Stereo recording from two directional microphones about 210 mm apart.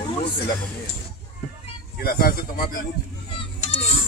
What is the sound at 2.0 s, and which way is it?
Speech, 45° left (ahead or behind).